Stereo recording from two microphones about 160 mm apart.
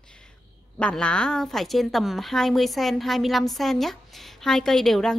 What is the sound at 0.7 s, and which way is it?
A woman's voice, 5° left (ahead or behind).